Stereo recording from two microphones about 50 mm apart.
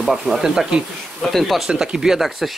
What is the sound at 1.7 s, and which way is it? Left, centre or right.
Speech, centre.